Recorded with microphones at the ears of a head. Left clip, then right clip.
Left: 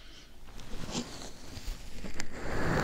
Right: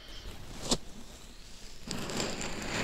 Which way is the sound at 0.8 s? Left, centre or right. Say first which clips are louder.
Left 12 dB; left.